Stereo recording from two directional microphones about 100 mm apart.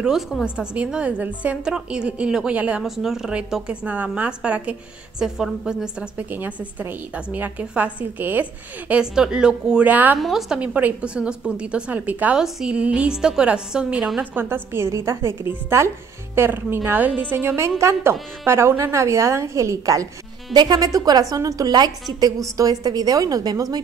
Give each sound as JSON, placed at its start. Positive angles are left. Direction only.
{"t": 0.0, "sound": "a woman's voice", "side_deg": -5}
{"t": 10.2, "sound": "a woman's voice", "side_deg": -5}
{"t": 10.6, "sound": "a woman's voice", "side_deg": -15}
{"t": 14.3, "sound": "a woman's voice", "side_deg": -20}
{"t": 20.5, "sound": "a woman's voice", "side_deg": -45}